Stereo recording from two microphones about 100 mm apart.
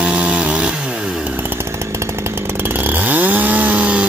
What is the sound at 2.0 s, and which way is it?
Chainsaw, 25° right (ahead or behind).